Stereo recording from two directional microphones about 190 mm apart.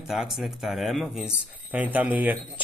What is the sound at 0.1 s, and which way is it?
Speech, centre (ahead or behind).